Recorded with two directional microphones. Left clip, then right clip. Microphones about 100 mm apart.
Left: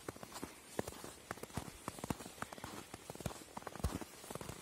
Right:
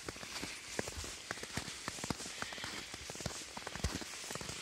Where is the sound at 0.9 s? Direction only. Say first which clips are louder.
Right 4 dB; 20° right (ahead or behind).